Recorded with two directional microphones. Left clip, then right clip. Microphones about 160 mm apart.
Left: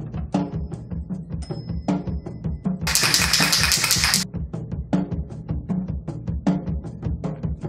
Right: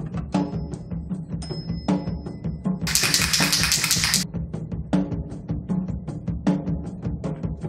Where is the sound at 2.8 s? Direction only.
5° right (ahead or behind).